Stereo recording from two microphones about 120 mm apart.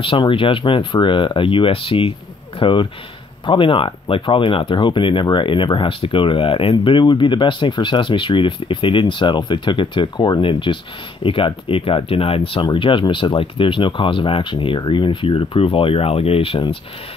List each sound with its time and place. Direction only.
0.0 s speech: 45° left (ahead or behind)